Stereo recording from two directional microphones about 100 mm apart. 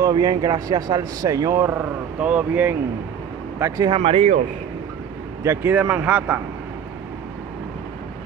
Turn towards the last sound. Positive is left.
turn(degrees=-15)  # may be behind; listen again after turning